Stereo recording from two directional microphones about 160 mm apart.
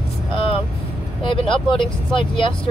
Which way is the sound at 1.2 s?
30° left (ahead or behind).